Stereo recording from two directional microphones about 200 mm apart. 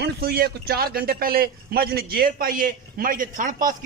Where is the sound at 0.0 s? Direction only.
50° right (ahead or behind).